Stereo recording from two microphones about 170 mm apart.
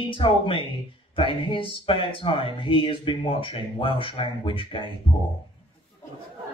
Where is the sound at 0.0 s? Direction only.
30° left (ahead or behind).